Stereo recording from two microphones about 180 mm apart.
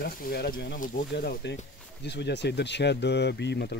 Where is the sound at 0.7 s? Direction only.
50° left (ahead or behind).